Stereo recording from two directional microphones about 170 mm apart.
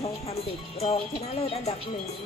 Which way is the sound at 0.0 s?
35° left (ahead or behind).